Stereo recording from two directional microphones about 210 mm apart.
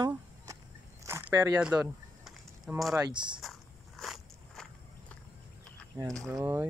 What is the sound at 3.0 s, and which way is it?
Speech, 20° right (ahead or behind).